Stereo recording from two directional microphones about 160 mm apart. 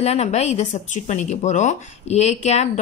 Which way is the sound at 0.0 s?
45° left (ahead or behind).